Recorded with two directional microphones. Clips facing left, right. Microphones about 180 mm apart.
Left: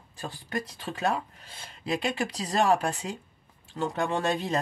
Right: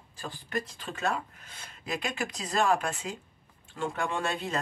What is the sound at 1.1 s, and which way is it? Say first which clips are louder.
Speech: left 3 dB; 30° left (ahead or behind).